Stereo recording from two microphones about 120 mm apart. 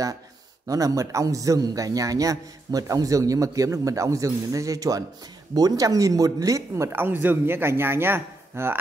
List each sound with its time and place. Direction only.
0.7 s a man's voice: 30° right (ahead or behind)